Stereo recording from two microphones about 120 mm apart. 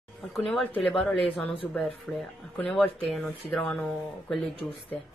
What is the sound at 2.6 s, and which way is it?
Speech, 10° left (ahead or behind).